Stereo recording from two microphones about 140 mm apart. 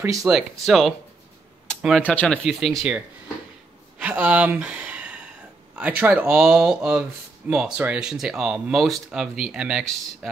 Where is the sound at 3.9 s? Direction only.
10° right (ahead or behind).